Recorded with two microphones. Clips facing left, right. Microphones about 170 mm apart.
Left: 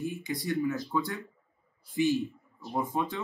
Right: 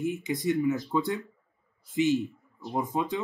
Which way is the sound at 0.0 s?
20° right (ahead or behind).